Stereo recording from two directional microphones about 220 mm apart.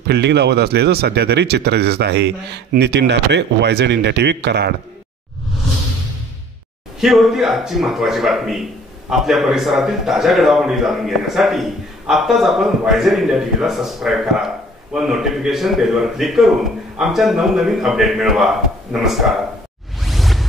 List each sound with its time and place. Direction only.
0.0 s speech: 50° right (ahead or behind)
7.0 s a man's voice: centre (ahead or behind)
20.0 s whoosh: centre (ahead or behind)